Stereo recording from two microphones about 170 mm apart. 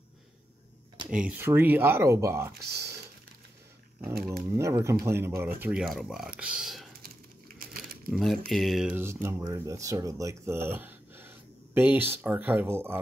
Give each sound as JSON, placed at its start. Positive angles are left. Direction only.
{"t": 1.1, "sound": "speech", "side_deg": -5}
{"t": 4.5, "sound": "speech", "side_deg": -15}
{"t": 7.5, "sound": "crumpling", "side_deg": -60}
{"t": 8.1, "sound": "speech", "side_deg": 0}
{"t": 9.0, "sound": "speech", "side_deg": -15}